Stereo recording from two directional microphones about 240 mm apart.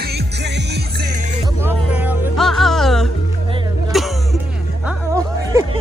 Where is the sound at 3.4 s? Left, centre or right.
Right.